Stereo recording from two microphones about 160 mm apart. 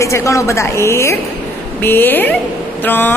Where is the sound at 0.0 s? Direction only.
20° left (ahead or behind).